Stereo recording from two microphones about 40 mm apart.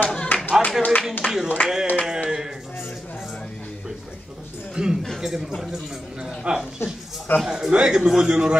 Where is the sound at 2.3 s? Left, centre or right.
Centre.